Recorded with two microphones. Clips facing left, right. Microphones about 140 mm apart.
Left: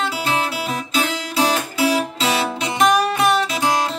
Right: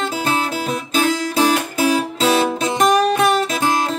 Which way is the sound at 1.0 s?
45° right (ahead or behind).